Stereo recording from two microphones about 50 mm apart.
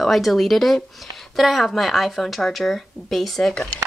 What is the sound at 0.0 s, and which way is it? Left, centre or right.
Speech, centre.